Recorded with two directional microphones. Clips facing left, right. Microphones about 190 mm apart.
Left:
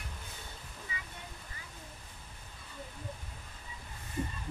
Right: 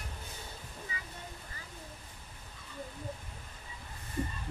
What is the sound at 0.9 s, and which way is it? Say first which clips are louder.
Waterfall: left 2 dB; 40° right (ahead or behind).